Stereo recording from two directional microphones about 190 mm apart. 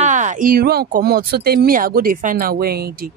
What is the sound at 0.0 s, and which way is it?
Speech, 40° right (ahead or behind).